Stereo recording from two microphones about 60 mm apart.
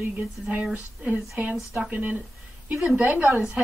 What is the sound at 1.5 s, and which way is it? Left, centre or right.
Speech, centre.